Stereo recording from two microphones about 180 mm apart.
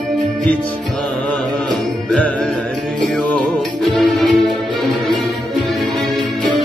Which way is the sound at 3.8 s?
Centre (ahead or behind).